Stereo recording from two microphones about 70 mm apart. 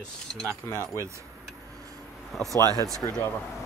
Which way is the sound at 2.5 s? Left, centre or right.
Right.